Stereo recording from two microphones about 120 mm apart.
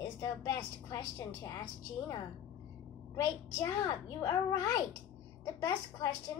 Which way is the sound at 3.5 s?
30° left (ahead or behind).